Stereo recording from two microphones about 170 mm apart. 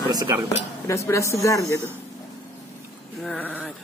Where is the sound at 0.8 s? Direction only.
15° left (ahead or behind).